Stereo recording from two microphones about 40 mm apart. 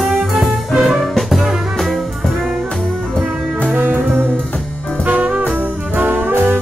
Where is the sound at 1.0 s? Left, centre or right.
Centre.